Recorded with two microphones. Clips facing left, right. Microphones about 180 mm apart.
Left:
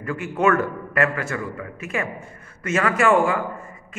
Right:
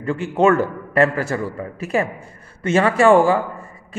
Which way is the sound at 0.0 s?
25° right (ahead or behind).